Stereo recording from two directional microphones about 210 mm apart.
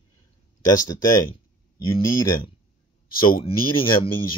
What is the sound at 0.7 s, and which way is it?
Speech, 15° left (ahead or behind).